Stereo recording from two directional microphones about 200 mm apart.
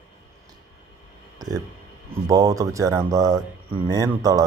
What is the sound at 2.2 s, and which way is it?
Speech, 15° right (ahead or behind).